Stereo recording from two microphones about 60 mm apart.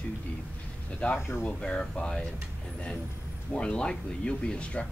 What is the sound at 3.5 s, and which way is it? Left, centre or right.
Speech, centre.